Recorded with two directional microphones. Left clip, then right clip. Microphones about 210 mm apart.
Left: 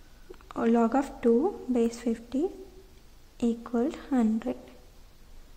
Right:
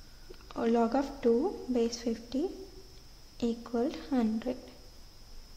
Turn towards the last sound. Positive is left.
turn(degrees=15)  # may be behind; listen again after turning